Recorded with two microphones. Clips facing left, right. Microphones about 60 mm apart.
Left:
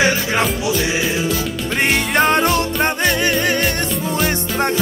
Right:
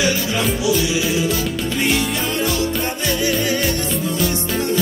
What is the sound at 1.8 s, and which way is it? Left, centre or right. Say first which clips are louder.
Music: left 6 dB; left.